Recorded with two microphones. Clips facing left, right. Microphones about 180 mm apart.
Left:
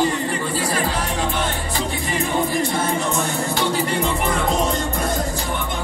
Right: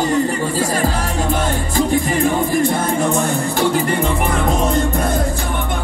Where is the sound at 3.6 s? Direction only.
55° right (ahead or behind).